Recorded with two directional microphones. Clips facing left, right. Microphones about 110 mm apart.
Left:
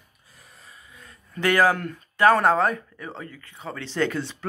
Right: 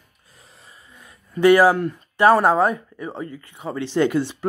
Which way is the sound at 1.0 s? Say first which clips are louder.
Right 10 dB; 15° right (ahead or behind).